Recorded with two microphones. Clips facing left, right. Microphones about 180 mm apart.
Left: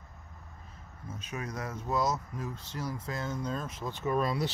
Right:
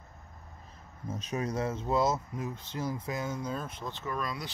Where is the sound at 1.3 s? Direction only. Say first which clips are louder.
Right 6 dB; 35° right (ahead or behind); by 3.7 s 5° right (ahead or behind).